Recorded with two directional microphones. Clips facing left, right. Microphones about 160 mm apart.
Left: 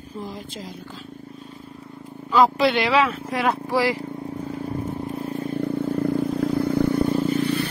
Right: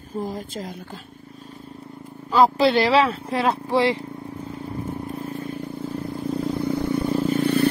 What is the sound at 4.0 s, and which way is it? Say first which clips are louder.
Vehicle: left 3 dB; 25° left (ahead or behind).